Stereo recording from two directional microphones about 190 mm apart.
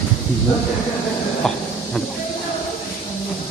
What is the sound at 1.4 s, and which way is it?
Speech, 5° left (ahead or behind).